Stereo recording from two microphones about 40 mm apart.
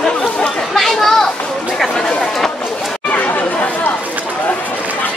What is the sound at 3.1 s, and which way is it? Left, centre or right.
Chatter, left.